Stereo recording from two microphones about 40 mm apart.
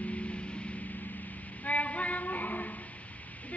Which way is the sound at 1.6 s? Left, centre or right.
Left.